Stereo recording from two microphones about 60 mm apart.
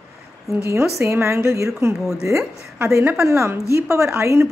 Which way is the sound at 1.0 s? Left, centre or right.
Right.